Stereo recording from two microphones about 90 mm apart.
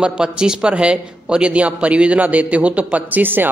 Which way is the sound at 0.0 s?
10° right (ahead or behind).